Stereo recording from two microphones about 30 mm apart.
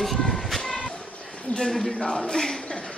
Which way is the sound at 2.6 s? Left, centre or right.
Left.